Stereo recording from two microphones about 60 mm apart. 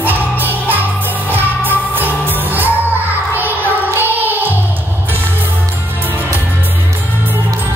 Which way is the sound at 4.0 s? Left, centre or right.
Right.